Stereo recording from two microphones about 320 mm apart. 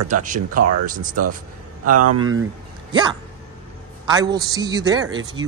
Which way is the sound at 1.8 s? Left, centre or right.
Right.